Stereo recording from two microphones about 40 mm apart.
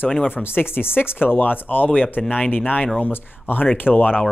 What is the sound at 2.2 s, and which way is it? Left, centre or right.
Speech, left.